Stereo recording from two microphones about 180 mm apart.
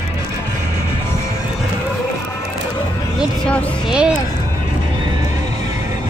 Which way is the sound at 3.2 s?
5° left (ahead or behind).